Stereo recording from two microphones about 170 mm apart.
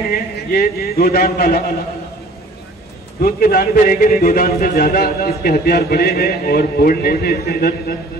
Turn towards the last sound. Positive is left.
turn(degrees=65)  # may be behind; listen again after turning